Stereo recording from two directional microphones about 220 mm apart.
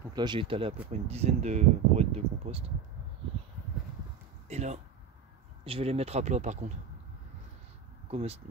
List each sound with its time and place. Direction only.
0.1 s speech: 20° right (ahead or behind)
4.5 s speech: 30° right (ahead or behind)
8.1 s speech: 30° right (ahead or behind)